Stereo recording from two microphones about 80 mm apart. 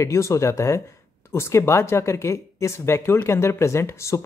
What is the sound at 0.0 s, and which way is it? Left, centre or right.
Speech, left.